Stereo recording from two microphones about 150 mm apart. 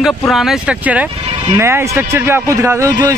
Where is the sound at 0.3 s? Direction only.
Centre (ahead or behind).